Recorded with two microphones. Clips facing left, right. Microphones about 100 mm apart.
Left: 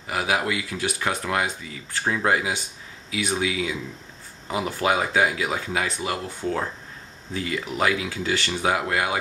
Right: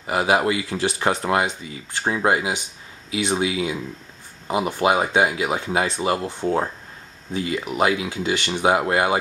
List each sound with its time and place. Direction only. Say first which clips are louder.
0.0 s speech: right 5 dB; 30° right (ahead or behind)